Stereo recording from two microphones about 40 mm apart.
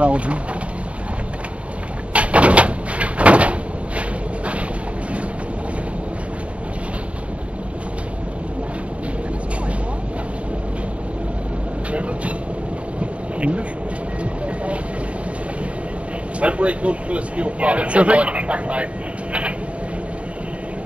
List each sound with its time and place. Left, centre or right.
0.0 s speech: right
2.1 s cupboard open or close: right
11.9 s train: right
13.0 s a sound: right
16.3 s speech: right